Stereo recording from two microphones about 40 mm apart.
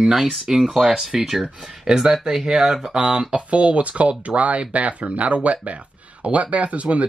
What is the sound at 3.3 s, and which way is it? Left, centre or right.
Speech, right.